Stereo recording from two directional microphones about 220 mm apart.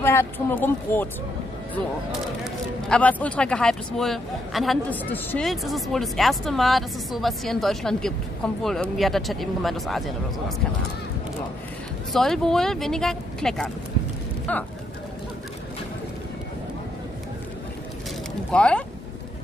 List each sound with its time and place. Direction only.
0.0 s speech: 10° left (ahead or behind)
2.9 s a man's voice: 5° left (ahead or behind)
12.1 s a man's voice: centre (ahead or behind)
18.5 s speech: 5° left (ahead or behind)